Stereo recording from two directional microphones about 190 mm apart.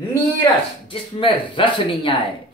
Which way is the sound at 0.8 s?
25° left (ahead or behind).